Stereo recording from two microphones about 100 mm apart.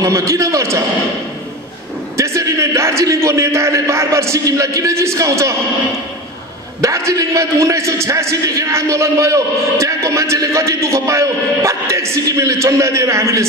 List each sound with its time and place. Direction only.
0.0 s a man's voice: 30° right (ahead or behind)
2.1 s a man's voice: 30° right (ahead or behind)
7.1 s a man's voice: 30° right (ahead or behind)